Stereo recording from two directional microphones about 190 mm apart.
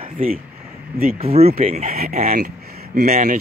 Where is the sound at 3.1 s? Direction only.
40° right (ahead or behind).